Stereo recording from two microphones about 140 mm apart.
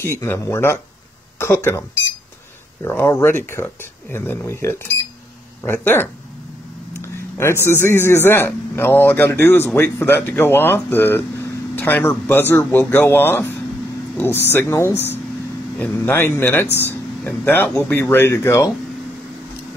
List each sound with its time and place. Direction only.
0.0 s a man's voice: 20° left (ahead or behind)